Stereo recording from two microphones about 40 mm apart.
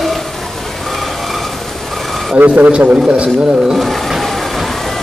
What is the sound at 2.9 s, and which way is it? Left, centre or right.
Speech, right.